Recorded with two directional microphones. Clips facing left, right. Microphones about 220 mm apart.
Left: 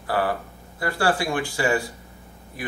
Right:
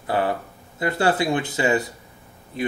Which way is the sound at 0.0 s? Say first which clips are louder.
Right 1 dB; 20° right (ahead or behind).